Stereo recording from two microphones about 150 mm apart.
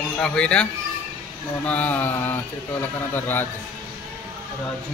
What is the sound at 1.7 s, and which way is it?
Mantra, 10° left (ahead or behind).